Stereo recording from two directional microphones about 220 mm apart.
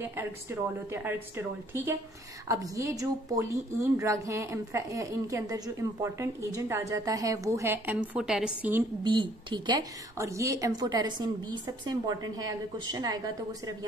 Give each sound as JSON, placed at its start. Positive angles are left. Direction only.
{"t": 0.0, "sound": "a woman's voice", "side_deg": -10}
{"t": 9.0, "sound": "a woman's voice", "side_deg": -20}